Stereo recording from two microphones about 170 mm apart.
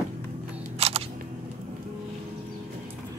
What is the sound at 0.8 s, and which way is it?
Single-lens reflex camera, 35° right (ahead or behind).